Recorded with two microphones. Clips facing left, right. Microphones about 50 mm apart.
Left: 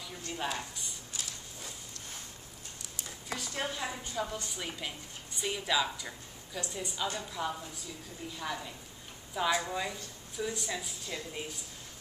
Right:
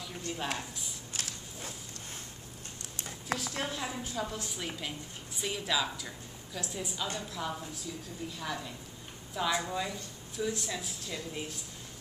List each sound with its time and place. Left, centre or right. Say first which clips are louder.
0.6 s speech: even; centre
1.1 s a sound: right 2 dB; right
3.3 s a woman's voice: even; centre